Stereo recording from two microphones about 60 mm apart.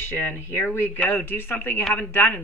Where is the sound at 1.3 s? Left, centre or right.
Left.